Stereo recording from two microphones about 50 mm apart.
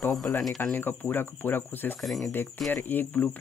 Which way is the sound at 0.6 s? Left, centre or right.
Left.